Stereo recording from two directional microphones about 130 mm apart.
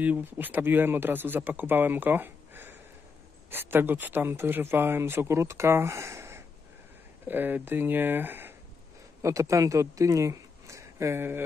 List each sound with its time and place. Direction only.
0.0 s speech: 15° right (ahead or behind)